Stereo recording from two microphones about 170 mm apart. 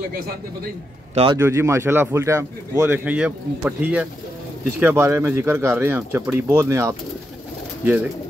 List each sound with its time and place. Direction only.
1.1 s speech: 30° right (ahead or behind)
1.4 s a man's voice: 15° right (ahead or behind)